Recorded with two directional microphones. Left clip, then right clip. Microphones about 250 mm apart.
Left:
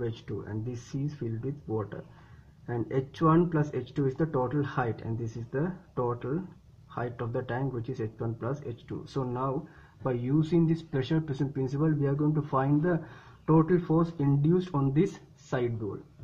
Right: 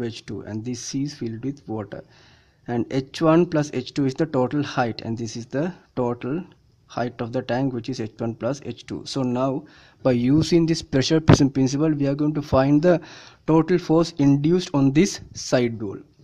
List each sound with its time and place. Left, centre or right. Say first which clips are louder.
0.0 s speech: right 5 dB; right